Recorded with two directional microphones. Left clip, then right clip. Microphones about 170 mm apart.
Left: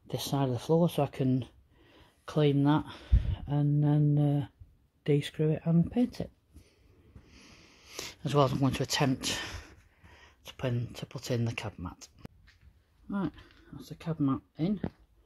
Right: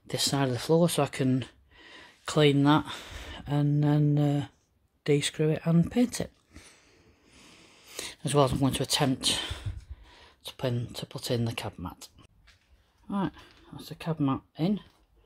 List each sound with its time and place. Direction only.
0.1 s speech: centre (ahead or behind)
7.2 s a sound: 5° right (ahead or behind)
8.9 s speech: 5° right (ahead or behind)